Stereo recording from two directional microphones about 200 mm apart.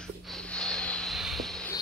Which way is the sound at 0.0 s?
Centre (ahead or behind).